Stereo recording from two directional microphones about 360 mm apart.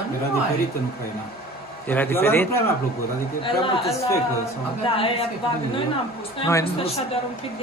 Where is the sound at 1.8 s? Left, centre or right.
Centre.